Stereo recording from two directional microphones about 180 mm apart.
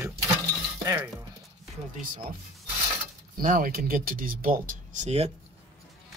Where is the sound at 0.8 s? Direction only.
15° right (ahead or behind).